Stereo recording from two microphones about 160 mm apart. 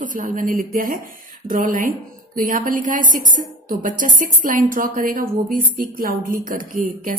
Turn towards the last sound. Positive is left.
turn(degrees=-60)  # may be behind; listen again after turning